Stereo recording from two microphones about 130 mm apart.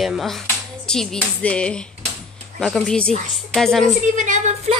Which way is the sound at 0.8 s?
5° left (ahead or behind).